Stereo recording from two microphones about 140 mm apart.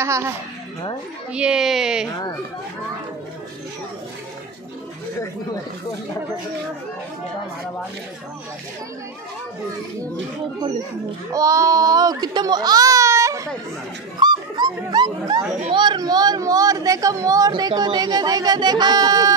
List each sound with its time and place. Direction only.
0.0 s speech: 20° right (ahead or behind)
1.3 s speech: 5° right (ahead or behind)
11.3 s speech: 25° right (ahead or behind)